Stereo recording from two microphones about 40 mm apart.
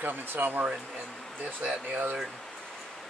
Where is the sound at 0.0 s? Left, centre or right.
Right.